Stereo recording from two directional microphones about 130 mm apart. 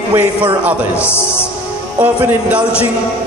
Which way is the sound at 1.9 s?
15° right (ahead or behind).